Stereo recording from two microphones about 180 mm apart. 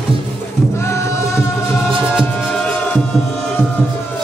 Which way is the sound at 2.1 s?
5° left (ahead or behind).